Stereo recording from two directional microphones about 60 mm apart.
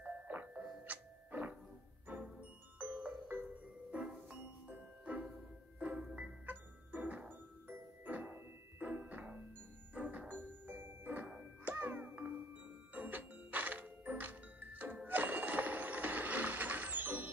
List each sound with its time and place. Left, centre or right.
0.0 s music: right
15.0 s mechanisms: right